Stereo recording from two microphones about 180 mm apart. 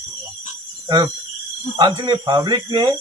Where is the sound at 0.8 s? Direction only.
20° right (ahead or behind).